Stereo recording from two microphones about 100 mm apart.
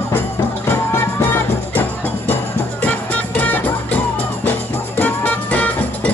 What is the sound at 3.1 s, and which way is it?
Music, 15° left (ahead or behind).